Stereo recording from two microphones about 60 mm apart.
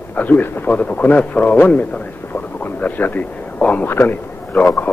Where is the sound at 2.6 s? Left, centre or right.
Left.